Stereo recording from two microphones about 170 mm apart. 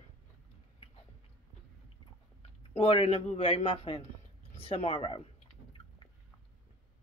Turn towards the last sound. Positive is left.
turn(degrees=35)  # may be behind; listen again after turning